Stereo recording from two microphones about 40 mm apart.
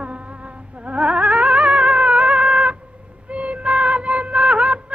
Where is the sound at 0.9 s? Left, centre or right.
Right.